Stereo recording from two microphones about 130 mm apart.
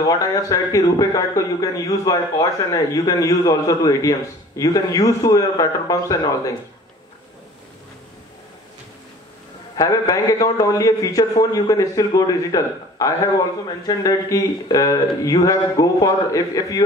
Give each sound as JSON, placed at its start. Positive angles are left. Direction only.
{"t": 0.0, "sound": "a man's voice", "side_deg": 30}
{"t": 9.8, "sound": "a man's voice", "side_deg": 25}